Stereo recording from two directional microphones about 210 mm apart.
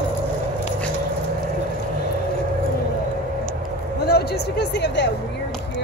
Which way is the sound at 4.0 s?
50° left (ahead or behind).